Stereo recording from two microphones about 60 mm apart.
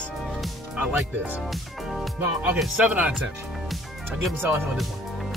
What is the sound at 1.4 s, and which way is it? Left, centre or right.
Music, centre.